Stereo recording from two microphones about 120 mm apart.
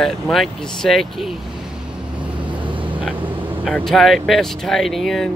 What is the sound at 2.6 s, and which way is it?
Vehicle, 45° right (ahead or behind).